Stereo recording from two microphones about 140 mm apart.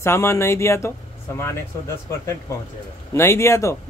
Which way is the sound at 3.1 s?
20° left (ahead or behind).